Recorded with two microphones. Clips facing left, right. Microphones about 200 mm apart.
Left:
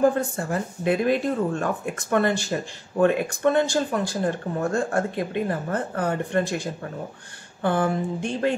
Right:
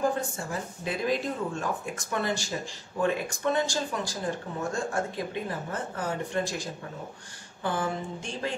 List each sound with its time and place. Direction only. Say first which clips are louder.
0.4 s speech: left 7 dB; 60° left (ahead or behind)